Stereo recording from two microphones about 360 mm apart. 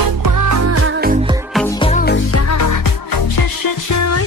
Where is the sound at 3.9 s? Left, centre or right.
Left.